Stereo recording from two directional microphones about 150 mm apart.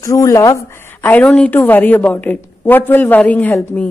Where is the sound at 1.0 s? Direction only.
10° left (ahead or behind).